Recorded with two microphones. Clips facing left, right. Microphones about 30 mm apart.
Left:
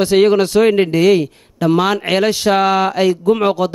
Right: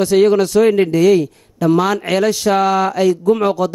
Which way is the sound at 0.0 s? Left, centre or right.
Left.